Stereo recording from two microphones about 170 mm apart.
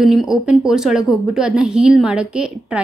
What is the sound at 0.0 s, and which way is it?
Speech, centre (ahead or behind).